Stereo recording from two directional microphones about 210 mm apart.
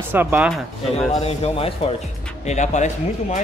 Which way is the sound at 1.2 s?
30° left (ahead or behind).